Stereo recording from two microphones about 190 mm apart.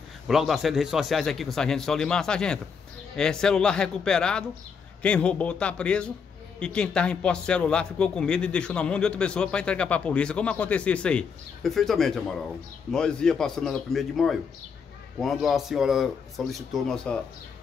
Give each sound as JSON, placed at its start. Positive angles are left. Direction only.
{"t": 0.3, "sound": "a man's voice", "side_deg": 0}